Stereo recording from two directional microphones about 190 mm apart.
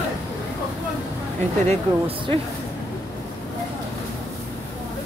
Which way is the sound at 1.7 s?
30° right (ahead or behind).